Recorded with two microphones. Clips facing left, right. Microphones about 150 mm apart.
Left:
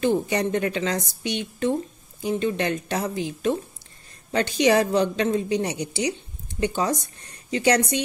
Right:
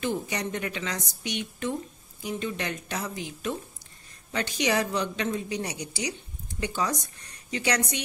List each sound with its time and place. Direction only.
0.0 s a woman's voice: 30° left (ahead or behind)